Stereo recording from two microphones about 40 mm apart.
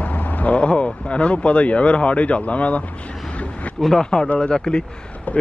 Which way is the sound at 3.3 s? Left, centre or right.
Left.